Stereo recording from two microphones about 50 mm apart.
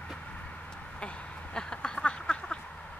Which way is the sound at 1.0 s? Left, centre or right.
Centre.